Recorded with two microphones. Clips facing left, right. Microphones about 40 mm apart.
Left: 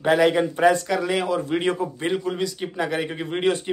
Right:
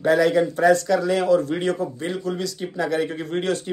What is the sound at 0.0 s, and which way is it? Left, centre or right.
Speech, left.